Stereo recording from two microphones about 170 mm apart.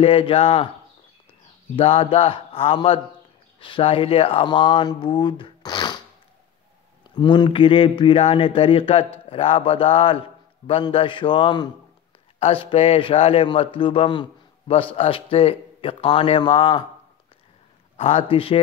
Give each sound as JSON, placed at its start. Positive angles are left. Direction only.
{"t": 0.0, "sound": "speech", "side_deg": 35}
{"t": 1.8, "sound": "speech", "side_deg": 35}
{"t": 7.2, "sound": "speech", "side_deg": 25}
{"t": 17.9, "sound": "speech", "side_deg": 35}